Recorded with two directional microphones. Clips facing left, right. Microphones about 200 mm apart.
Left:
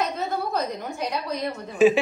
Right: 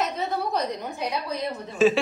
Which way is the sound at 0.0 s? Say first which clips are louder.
Even; centre (ahead or behind).